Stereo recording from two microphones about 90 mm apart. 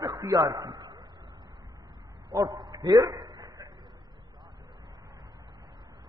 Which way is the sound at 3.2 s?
60° right (ahead or behind).